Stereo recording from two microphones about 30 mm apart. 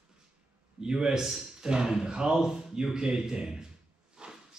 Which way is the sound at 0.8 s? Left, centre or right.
Right.